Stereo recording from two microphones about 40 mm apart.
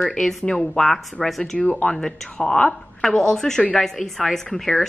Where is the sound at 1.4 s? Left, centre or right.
Centre.